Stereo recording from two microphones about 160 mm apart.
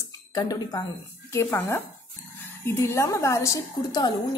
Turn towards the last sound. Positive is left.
turn(degrees=20)  # may be behind; listen again after turning